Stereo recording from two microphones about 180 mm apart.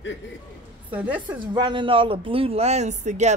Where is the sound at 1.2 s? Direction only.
25° right (ahead or behind).